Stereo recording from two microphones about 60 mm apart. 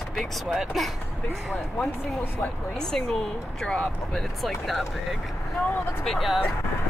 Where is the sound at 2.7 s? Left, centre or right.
Centre.